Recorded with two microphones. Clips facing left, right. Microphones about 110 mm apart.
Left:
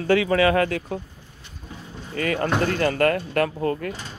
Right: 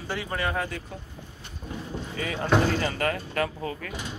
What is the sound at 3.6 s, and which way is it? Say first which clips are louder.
Speech: left 9 dB; 45° left (ahead or behind).